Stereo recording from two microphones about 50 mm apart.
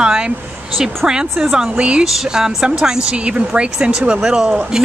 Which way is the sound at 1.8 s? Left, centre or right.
Right.